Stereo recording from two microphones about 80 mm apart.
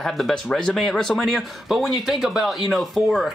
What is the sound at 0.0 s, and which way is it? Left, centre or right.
Speech, centre.